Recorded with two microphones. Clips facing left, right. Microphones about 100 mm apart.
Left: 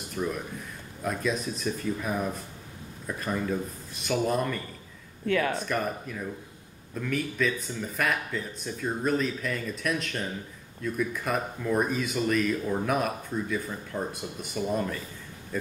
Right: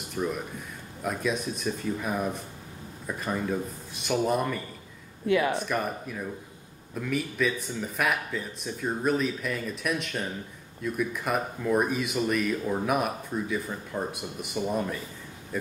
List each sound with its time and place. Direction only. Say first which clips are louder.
0.1 s speech: right 1 dB; 5° right (ahead or behind)
5.2 s speech: right 2 dB; 15° right (ahead or behind)
5.6 s speech: even; 5° right (ahead or behind)